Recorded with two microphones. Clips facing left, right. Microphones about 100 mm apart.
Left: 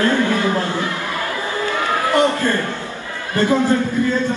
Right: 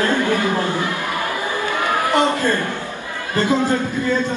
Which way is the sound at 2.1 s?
15° right (ahead or behind).